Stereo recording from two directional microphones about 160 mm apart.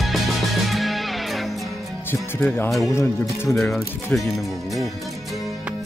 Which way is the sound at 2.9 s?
15° left (ahead or behind).